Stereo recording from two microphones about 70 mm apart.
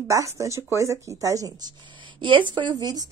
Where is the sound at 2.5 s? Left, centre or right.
Right.